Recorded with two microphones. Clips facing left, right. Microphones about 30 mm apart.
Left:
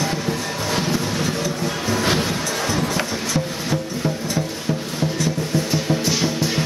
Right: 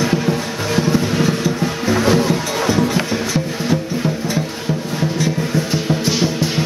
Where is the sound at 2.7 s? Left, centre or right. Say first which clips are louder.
Right 7 dB; centre.